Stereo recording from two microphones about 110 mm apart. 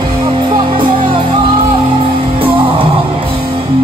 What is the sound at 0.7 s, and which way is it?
Music, 50° right (ahead or behind).